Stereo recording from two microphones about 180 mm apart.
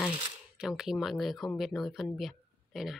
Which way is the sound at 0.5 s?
5° right (ahead or behind).